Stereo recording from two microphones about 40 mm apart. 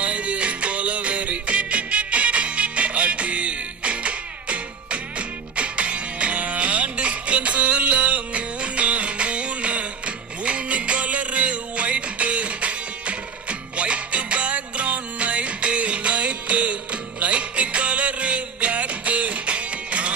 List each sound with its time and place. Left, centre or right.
0.0 s music: right